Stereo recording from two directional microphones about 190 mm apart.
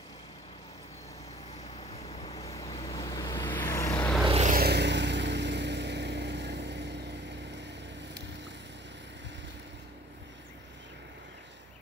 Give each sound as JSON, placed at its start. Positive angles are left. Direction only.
{"t": 1.8, "sound": "vehicle", "side_deg": 30}
{"t": 4.3, "sound": "vehicle", "side_deg": -35}
{"t": 4.6, "sound": "vehicle", "side_deg": -60}